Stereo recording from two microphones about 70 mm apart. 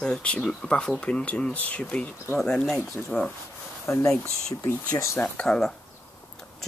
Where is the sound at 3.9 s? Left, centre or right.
Left.